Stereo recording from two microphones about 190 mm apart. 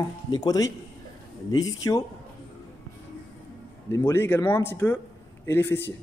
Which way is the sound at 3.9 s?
15° left (ahead or behind).